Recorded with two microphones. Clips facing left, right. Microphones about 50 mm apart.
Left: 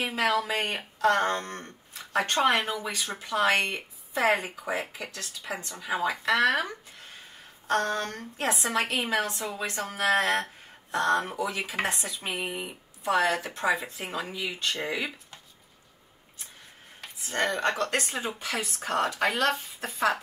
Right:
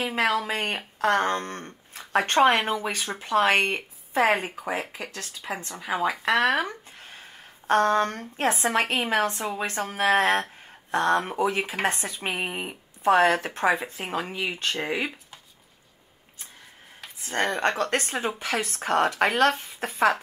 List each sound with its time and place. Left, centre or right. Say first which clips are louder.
0.0 s speech: right 2 dB; right
17.2 s speech: right 2 dB; right